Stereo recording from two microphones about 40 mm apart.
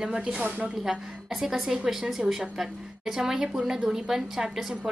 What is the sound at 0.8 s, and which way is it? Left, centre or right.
Speech, centre.